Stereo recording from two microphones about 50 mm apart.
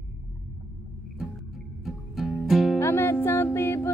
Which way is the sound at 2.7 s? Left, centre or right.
Left.